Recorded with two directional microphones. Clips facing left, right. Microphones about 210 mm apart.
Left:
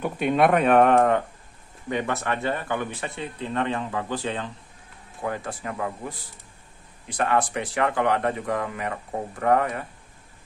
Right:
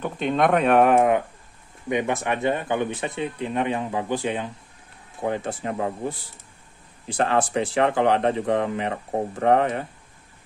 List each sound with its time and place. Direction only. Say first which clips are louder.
0.0 s speech: left 1 dB; 10° left (ahead or behind); by 9.8 s 25° right (ahead or behind)